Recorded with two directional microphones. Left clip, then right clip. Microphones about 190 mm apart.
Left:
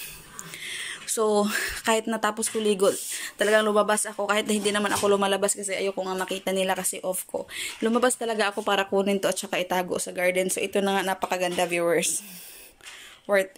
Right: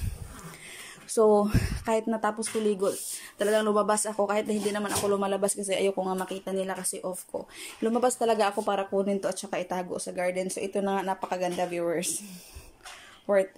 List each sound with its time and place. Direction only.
0.6 s whispering: 5° right (ahead or behind)
1.2 s speech: 10° right (ahead or behind)
4.0 s a woman's voice: 10° left (ahead or behind)
4.3 s speech: 5° right (ahead or behind)
5.5 s speech: 15° right (ahead or behind)
6.1 s speech: centre (ahead or behind)
13.3 s speech: centre (ahead or behind)